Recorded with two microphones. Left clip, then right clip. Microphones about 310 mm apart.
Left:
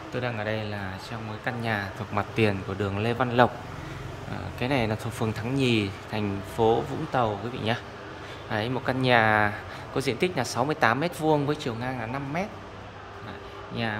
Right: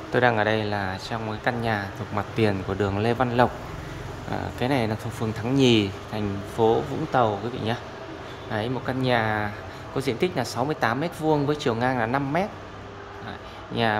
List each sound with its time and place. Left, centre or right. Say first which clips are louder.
0.1 s speech: right 10 dB; centre
4.6 s speech: right 1 dB; centre
13.8 s speech: right 7 dB; centre